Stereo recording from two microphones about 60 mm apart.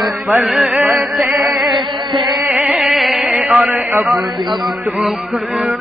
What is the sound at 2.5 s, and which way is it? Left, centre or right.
Music, centre.